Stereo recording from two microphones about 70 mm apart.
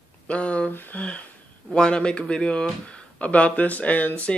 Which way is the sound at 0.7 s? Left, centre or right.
Left.